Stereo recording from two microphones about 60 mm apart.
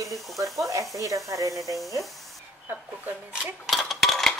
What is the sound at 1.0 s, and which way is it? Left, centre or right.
Speech, right.